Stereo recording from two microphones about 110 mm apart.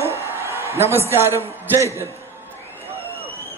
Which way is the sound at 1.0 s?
20° right (ahead or behind).